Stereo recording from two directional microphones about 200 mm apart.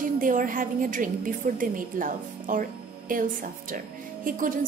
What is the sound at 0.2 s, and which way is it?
A woman's voice, 45° right (ahead or behind).